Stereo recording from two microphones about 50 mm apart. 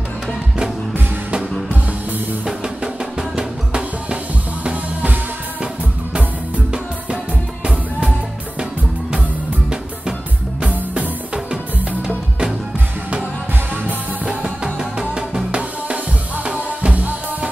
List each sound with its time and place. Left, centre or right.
2.4 s music: centre
4.6 s music: right
10.7 s music: right
14.2 s music: centre